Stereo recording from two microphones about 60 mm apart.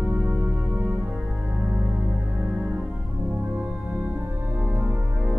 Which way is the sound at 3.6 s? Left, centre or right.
Centre.